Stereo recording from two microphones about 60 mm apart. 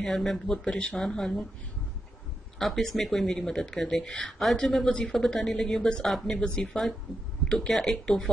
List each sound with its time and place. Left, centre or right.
0.0 s speech: centre
2.6 s speech: centre